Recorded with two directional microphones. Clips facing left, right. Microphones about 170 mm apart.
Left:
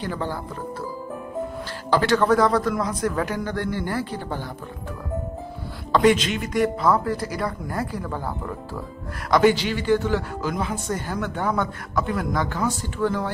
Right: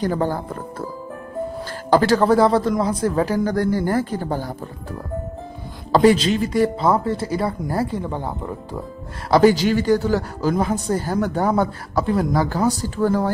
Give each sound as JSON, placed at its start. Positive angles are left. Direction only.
{"t": 0.0, "sound": "speech", "side_deg": -45}
{"t": 1.9, "sound": "speech", "side_deg": -40}
{"t": 5.9, "sound": "speech", "side_deg": -35}
{"t": 9.3, "sound": "speech", "side_deg": -35}